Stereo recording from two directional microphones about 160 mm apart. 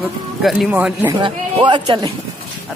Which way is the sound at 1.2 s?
30° right (ahead or behind).